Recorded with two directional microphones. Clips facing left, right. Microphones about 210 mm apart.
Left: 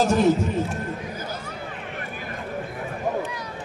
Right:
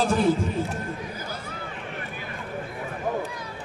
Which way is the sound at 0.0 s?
45° left (ahead or behind).